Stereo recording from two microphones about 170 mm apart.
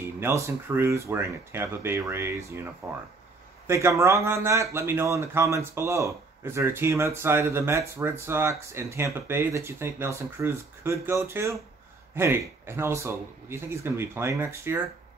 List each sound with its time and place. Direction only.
0.2 s speech: 15° right (ahead or behind)